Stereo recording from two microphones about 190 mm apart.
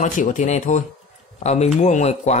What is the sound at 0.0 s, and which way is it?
Speech, 40° left (ahead or behind).